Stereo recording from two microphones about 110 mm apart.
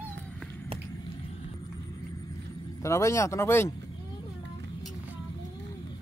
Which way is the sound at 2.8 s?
25° left (ahead or behind).